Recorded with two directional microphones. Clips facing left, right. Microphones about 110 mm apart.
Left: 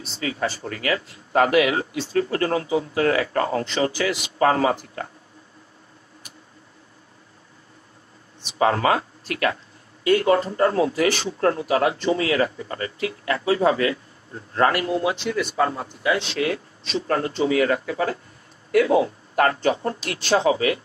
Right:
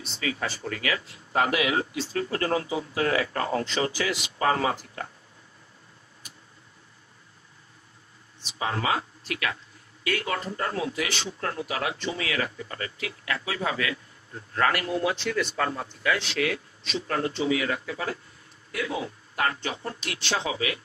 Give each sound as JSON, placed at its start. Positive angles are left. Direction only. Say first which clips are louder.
{"t": 0.0, "sound": "speech", "louder": "left 5 dB", "side_deg": 35}
{"t": 1.3, "sound": "speech", "louder": "left 6 dB", "side_deg": 55}
{"t": 8.5, "sound": "speech", "louder": "left 8 dB", "side_deg": 55}
{"t": 10.0, "sound": "speech", "louder": "left 11 dB", "side_deg": 30}